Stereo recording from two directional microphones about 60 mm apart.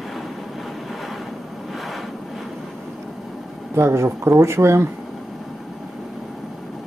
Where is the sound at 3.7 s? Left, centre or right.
Right.